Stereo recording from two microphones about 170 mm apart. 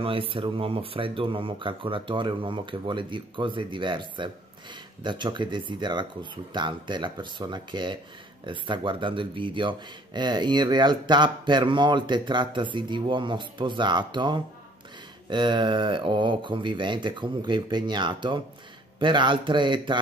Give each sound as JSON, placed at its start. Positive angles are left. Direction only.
{"t": 0.0, "sound": "speech", "side_deg": -30}